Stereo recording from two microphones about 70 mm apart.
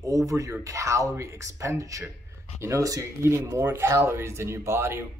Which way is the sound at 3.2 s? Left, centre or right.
Right.